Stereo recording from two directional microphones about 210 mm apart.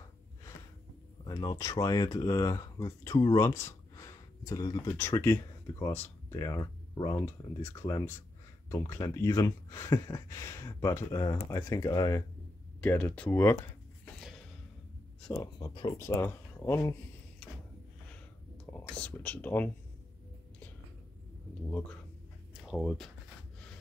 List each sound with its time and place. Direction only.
1.2 s speech: 20° left (ahead or behind)
12.8 s speech: 5° left (ahead or behind)
15.6 s speech: 20° left (ahead or behind)
18.7 s speech: 5° left (ahead or behind)
22.5 s speech: centre (ahead or behind)